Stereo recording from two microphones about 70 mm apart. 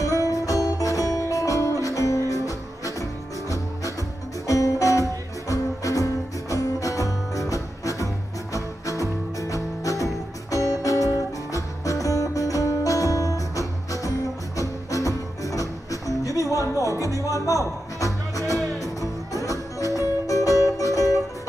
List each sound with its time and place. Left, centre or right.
0.2 s music: left